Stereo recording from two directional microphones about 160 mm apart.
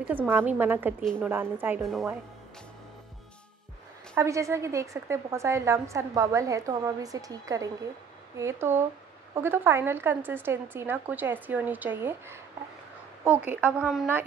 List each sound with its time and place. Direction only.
0.1 s speech: 10° right (ahead or behind)
4.1 s a woman's voice: 20° right (ahead or behind)